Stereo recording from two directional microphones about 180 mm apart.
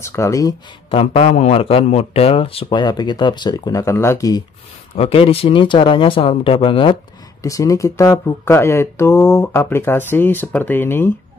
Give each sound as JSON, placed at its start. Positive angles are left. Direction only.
{"t": 0.0, "sound": "speech", "side_deg": 15}
{"t": 0.8, "sound": "speech", "side_deg": 30}
{"t": 4.9, "sound": "speech", "side_deg": 35}
{"t": 7.4, "sound": "speech", "side_deg": 20}